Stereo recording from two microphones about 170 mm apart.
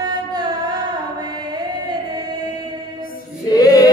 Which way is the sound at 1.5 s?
25° right (ahead or behind).